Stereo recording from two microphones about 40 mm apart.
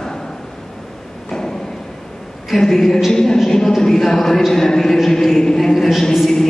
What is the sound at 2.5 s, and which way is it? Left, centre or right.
A woman's voice, centre.